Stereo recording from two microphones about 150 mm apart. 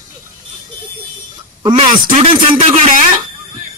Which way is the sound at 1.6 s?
30° right (ahead or behind).